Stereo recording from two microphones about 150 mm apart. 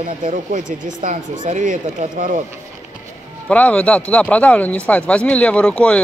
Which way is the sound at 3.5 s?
10° left (ahead or behind).